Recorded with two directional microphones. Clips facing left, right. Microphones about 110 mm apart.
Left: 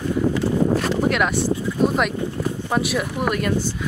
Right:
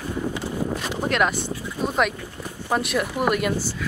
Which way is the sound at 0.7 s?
Centre (ahead or behind).